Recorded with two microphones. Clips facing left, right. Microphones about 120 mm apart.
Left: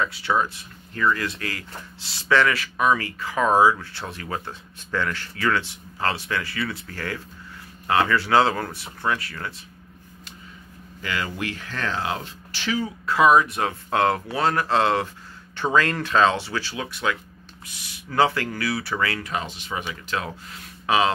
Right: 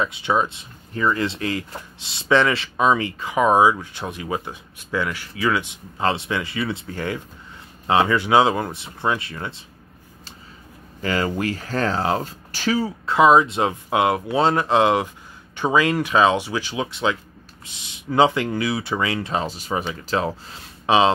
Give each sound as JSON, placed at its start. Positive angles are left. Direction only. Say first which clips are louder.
{"t": 0.0, "sound": "speech", "louder": "right 2 dB", "side_deg": -20}
{"t": 11.0, "sound": "speech", "louder": "right 6 dB", "side_deg": -40}
{"t": 13.0, "sound": "speech", "louder": "right 2 dB", "side_deg": -25}